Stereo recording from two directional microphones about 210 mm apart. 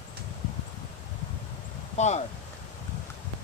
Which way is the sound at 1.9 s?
35° left (ahead or behind).